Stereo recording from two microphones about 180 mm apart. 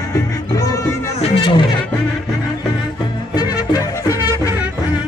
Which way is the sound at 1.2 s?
30° left (ahead or behind).